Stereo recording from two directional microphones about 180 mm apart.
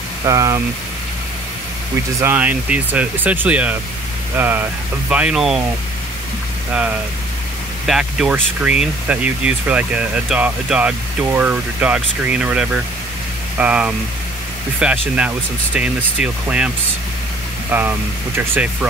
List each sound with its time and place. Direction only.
0.2 s speech: 20° right (ahead or behind)
2.1 s speech: 10° right (ahead or behind)
7.8 s speech: 5° right (ahead or behind)